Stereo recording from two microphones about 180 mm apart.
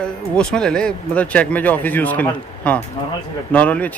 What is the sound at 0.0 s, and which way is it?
Speech, 5° left (ahead or behind).